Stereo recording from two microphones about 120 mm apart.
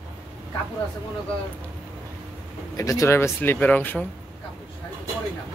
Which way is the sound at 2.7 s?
25° left (ahead or behind).